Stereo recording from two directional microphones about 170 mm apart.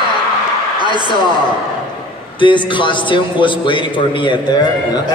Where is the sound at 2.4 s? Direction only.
30° left (ahead or behind).